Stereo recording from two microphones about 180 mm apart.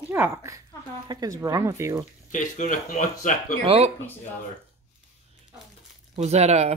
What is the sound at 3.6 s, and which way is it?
Speech, 30° right (ahead or behind).